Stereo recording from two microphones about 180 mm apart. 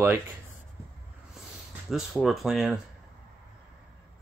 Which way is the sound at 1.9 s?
Centre (ahead or behind).